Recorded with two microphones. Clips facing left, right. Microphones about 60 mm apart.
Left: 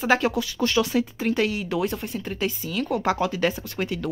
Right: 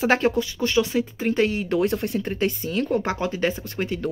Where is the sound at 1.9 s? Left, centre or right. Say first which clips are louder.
Right 6 dB; right.